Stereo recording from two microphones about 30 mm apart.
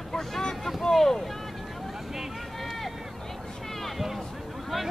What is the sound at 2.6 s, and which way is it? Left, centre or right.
Run, centre.